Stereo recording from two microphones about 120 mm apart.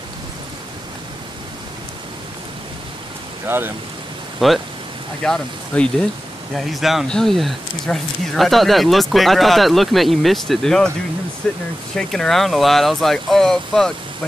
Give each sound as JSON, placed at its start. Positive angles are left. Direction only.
{"t": 3.4, "sound": "speech", "side_deg": -20}
{"t": 4.4, "sound": "speech", "side_deg": -5}